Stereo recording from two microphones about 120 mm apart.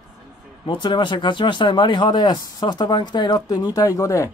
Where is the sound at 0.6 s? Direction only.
40° left (ahead or behind); by 4.3 s 25° left (ahead or behind).